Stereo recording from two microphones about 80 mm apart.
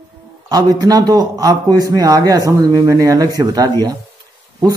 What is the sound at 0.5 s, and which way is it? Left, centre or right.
Speech, right.